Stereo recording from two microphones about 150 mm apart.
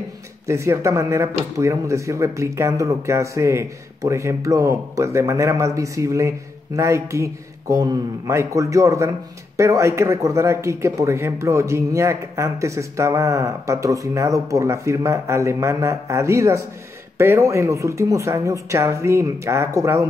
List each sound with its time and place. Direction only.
0.5 s speech: 20° right (ahead or behind)